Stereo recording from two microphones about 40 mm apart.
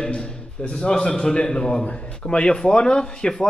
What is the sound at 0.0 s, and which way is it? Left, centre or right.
A man's voice, left.